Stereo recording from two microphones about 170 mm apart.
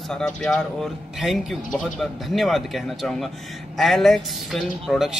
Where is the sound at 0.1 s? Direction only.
Centre (ahead or behind).